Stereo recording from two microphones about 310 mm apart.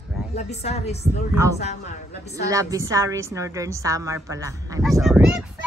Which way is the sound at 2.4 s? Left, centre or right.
Centre.